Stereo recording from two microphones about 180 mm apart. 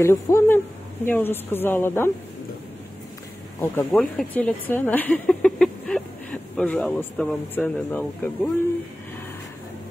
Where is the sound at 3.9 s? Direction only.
5° left (ahead or behind).